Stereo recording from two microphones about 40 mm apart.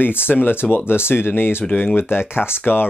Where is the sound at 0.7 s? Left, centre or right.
Left.